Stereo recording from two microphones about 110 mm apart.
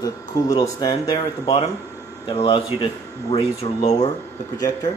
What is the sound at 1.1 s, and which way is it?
Speech, 55° left (ahead or behind).